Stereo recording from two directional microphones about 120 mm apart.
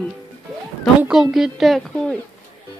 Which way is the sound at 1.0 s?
5° right (ahead or behind).